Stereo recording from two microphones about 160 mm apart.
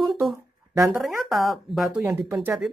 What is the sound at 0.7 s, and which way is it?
Speech, 15° right (ahead or behind).